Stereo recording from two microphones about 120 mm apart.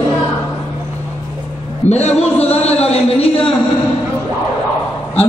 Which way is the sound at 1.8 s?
70° left (ahead or behind).